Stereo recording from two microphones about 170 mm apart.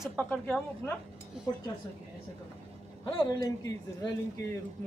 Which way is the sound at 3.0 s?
30° left (ahead or behind).